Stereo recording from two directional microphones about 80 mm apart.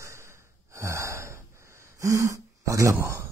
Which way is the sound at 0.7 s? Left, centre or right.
Right.